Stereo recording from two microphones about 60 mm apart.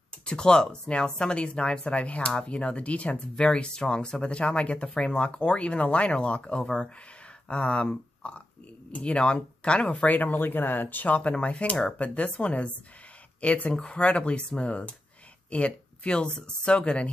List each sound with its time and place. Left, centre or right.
0.2 s speech: centre